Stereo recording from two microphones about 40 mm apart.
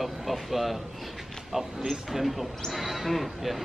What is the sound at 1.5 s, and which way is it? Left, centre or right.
A man's voice, centre.